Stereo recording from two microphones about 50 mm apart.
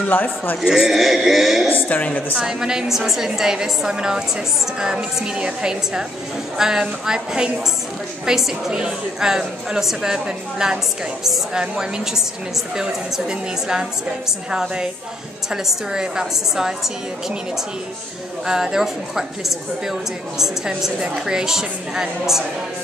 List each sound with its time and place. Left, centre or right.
0.1 s a man's voice: left
0.6 s a man's voice: centre
2.0 s a man's voice: left
2.3 s a woman's voice: centre
11.2 s a man's voice: centre
18.4 s a woman's voice: centre